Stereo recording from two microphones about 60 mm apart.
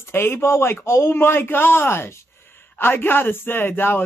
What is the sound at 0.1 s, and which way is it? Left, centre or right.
Speech, left.